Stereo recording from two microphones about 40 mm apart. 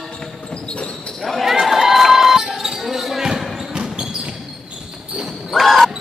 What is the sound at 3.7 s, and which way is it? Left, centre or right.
Basketball bounce, centre.